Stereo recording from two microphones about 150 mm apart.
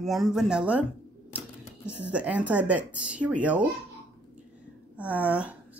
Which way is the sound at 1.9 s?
10° right (ahead or behind).